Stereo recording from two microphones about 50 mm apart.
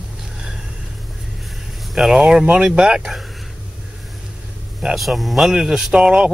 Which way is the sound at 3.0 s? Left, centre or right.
Centre.